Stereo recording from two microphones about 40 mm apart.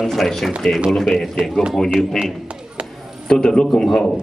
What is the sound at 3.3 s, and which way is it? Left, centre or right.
Speech, centre.